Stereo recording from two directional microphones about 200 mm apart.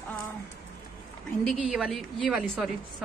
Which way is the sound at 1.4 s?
5° left (ahead or behind).